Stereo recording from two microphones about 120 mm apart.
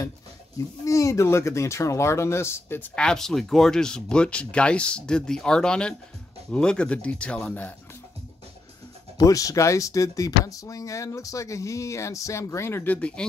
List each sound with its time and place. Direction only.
0.8 s speech: 25° left (ahead or behind)
3.0 s speech: 5° left (ahead or behind)
9.2 s speech: 30° left (ahead or behind); by 13.3 s 10° left (ahead or behind)